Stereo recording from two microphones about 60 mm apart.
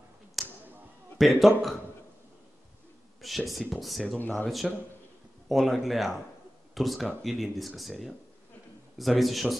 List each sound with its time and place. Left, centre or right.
0.4 s a sound: centre
1.1 s speech: centre
3.2 s speech: centre
4.2 s speech: left
4.5 s speech: centre
8.9 s speech: centre